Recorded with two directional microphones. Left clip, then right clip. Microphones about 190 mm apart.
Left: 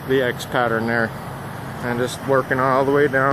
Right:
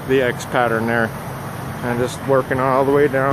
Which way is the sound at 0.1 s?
10° left (ahead or behind).